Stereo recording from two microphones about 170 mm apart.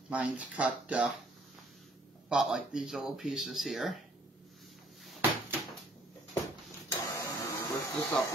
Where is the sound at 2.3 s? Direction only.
Centre (ahead or behind).